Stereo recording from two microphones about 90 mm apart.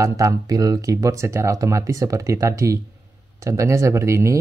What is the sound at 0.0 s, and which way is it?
Speech, 40° right (ahead or behind).